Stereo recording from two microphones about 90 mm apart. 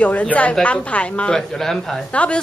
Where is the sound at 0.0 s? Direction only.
15° left (ahead or behind).